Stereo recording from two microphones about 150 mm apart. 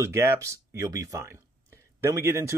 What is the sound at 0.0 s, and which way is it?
Speech, 20° right (ahead or behind).